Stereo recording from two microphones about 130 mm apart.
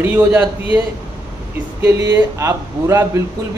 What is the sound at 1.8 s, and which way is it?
A man's voice, 20° right (ahead or behind).